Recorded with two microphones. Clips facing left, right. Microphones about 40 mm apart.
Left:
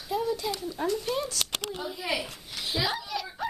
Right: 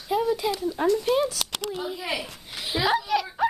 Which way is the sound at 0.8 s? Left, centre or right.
Right.